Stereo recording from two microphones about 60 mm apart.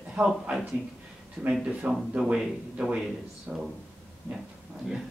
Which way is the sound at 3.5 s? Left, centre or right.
Centre.